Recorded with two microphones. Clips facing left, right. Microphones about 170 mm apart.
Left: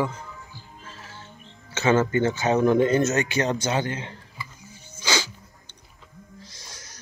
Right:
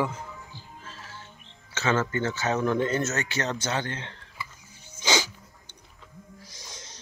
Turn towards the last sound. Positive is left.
turn(degrees=-20)  # may be behind; listen again after turning